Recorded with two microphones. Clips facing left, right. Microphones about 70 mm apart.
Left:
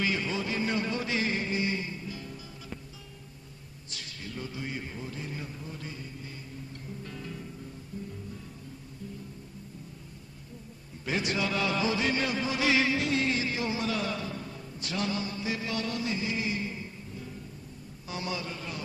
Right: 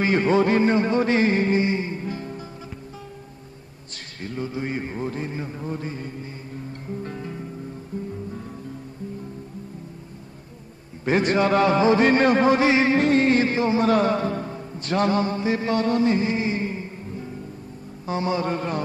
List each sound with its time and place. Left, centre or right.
0.0 s a man's voice: right
0.7 s music: right
1.7 s music: right
2.0 s music: right
3.9 s a man's voice: right
5.3 s music: right
11.1 s a man's voice: right
12.6 s music: right
18.5 s a man's voice: right